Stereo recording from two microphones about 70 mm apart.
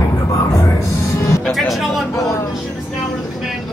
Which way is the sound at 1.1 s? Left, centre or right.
Left.